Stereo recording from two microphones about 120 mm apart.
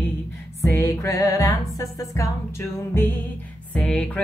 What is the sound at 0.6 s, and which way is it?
Music, 25° left (ahead or behind).